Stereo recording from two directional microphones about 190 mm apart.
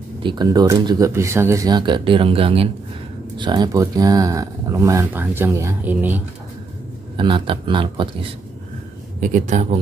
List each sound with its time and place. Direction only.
0.2 s speech: 25° right (ahead or behind)
7.2 s speech: 25° right (ahead or behind)
9.2 s speech: 40° right (ahead or behind)